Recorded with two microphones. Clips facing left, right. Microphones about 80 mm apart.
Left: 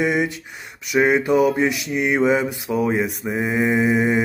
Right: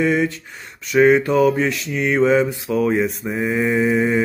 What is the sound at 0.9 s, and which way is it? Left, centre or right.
Mantra, centre.